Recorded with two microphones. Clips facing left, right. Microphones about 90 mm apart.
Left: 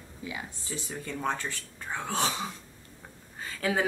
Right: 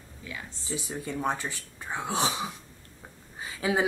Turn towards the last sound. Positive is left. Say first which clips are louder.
# right 2 dB
turn(degrees=-15)  # may be behind; listen again after turning